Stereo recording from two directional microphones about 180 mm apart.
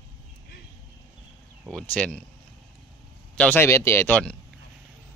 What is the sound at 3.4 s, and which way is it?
Speech, 10° left (ahead or behind).